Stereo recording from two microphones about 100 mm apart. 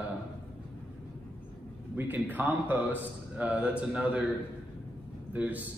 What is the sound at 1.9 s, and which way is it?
A man's voice, 20° right (ahead or behind).